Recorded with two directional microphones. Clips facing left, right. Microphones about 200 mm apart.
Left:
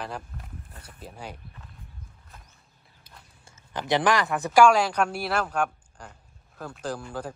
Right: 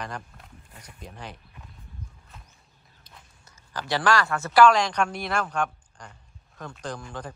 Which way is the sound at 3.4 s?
20° left (ahead or behind).